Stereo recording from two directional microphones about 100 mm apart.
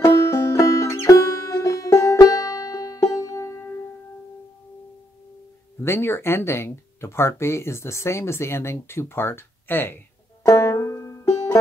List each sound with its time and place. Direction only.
0.0 s music: 30° left (ahead or behind)
5.8 s speech: 25° left (ahead or behind)
10.4 s banjo: 30° left (ahead or behind)